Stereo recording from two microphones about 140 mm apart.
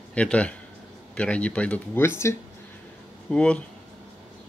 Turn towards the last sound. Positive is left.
turn(degrees=5)  # may be behind; listen again after turning